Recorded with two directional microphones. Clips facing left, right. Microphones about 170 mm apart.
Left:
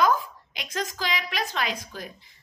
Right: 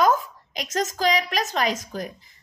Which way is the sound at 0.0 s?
45° right (ahead or behind).